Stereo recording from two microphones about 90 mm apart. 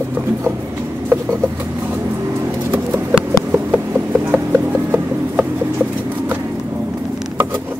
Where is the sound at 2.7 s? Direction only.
15° right (ahead or behind).